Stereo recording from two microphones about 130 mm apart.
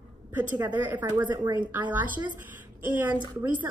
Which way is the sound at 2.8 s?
15° right (ahead or behind).